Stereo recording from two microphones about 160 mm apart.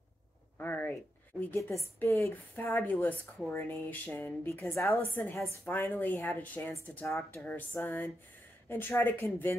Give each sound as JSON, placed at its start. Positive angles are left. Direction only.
{"t": 0.6, "sound": "a sound", "side_deg": 10}
{"t": 2.0, "sound": "a woman's voice", "side_deg": 15}
{"t": 4.7, "sound": "a woman's voice", "side_deg": 0}
{"t": 5.1, "sound": "a woman's voice", "side_deg": 15}